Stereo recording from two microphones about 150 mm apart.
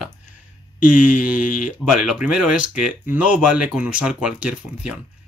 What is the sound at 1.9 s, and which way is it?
Speech, 5° right (ahead or behind).